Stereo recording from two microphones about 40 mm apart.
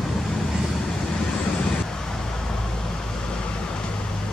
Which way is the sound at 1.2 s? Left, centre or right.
Left.